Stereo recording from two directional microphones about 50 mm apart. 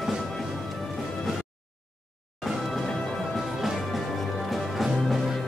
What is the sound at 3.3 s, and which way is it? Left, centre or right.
Music, centre.